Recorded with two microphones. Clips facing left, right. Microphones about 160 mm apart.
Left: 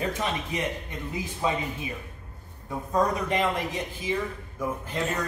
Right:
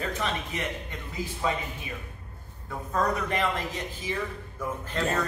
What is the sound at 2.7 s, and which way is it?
A man's voice, 20° left (ahead or behind).